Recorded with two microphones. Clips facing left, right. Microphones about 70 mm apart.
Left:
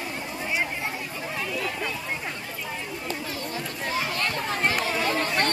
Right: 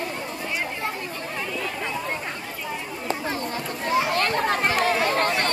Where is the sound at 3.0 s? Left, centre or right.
Right.